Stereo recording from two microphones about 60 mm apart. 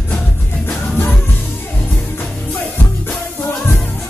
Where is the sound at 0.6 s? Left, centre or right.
Left.